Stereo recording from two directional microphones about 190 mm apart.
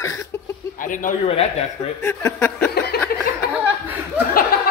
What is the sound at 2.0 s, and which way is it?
Speech, 10° left (ahead or behind).